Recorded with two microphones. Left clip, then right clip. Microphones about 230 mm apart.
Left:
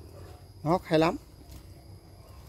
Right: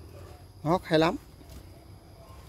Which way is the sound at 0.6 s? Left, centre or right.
Centre.